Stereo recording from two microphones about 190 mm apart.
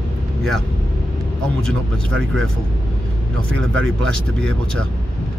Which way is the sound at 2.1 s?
90° right.